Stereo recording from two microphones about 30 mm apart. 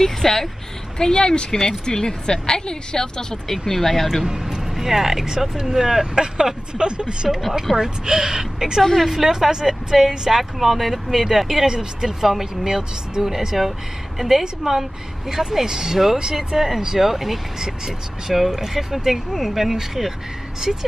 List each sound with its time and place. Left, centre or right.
0.0 s speech: centre
0.9 s a woman's voice: left
3.4 s speech: centre
4.2 s speech: centre
6.3 s a woman's voice: right
7.7 s a woman's voice: centre
9.0 s speech: centre
9.3 s a woman's voice: centre
10.6 s a woman's voice: centre; by 12.2 s right
12.2 s speech: centre
14.7 s a woman's voice: right